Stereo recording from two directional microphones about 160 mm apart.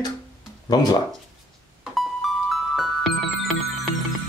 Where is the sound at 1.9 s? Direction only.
Centre (ahead or behind).